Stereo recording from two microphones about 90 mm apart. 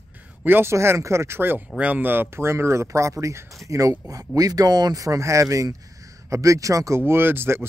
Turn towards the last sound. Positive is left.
turn(degrees=-25)  # may be behind; listen again after turning